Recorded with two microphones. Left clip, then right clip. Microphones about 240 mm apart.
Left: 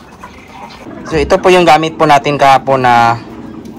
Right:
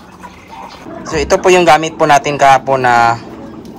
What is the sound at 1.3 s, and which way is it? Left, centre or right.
A man's voice, centre.